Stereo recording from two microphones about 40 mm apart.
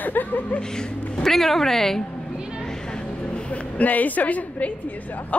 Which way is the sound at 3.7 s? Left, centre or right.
Left.